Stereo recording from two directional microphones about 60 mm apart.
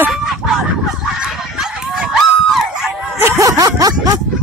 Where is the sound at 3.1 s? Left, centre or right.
Right.